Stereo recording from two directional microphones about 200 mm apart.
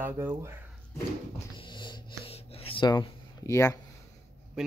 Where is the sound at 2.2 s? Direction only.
30° left (ahead or behind).